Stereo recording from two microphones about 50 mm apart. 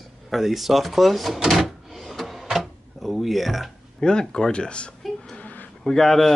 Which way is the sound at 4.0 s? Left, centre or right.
Centre.